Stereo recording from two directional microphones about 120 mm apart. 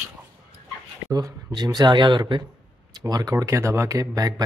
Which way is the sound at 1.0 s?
30° right (ahead or behind).